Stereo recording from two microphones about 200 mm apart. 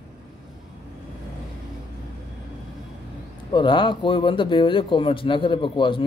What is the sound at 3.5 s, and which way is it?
Speech, 25° left (ahead or behind).